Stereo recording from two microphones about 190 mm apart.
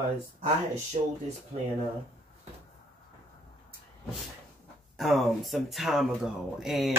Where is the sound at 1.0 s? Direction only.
30° right (ahead or behind).